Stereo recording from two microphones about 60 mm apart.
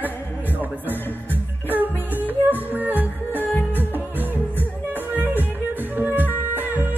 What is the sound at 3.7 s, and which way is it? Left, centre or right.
Music, right.